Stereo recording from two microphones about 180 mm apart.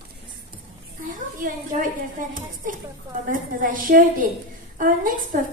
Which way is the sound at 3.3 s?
50° right (ahead or behind).